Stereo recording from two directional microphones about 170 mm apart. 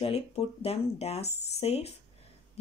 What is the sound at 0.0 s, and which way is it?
Speech, 40° left (ahead or behind).